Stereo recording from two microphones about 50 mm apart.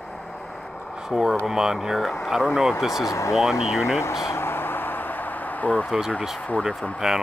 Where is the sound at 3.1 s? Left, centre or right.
Left.